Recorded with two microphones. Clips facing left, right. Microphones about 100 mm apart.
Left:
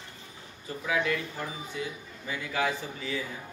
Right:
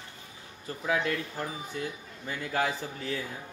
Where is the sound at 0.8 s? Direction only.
40° right (ahead or behind).